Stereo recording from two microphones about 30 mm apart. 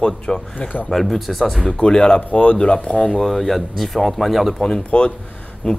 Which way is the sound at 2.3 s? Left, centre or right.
Left.